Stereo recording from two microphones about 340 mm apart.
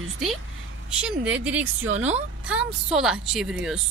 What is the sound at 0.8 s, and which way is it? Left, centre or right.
Speech, centre.